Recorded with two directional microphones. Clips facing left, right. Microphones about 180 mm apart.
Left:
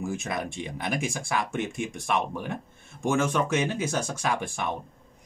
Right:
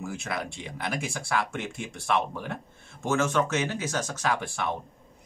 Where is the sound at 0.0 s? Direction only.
20° left (ahead or behind).